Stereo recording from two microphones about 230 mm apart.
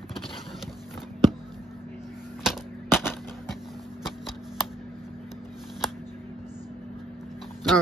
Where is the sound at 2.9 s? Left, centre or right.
Centre.